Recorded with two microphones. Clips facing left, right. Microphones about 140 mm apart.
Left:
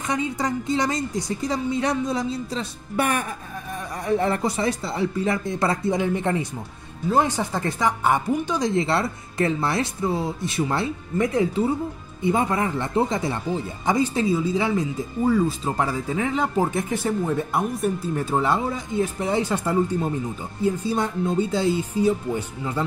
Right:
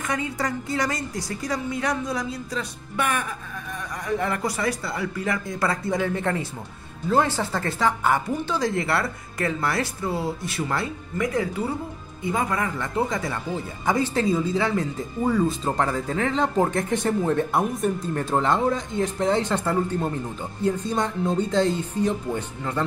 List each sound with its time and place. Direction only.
0.0 s speech: 20° left (ahead or behind)
13.8 s speech: 15° left (ahead or behind)